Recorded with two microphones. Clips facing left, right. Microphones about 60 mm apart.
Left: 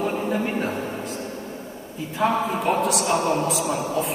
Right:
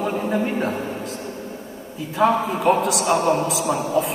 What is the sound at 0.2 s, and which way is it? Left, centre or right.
Speech, right.